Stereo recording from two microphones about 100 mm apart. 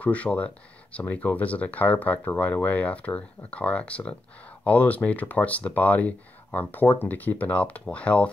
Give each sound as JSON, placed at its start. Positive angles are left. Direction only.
{"t": 0.0, "sound": "speech", "side_deg": 15}